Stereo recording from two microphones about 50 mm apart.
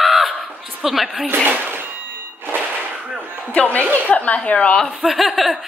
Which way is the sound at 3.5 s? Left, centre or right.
Left.